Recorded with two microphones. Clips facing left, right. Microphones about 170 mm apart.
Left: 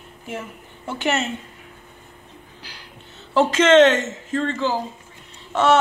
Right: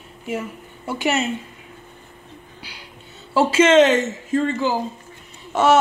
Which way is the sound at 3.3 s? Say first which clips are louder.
Even; 5° right (ahead or behind).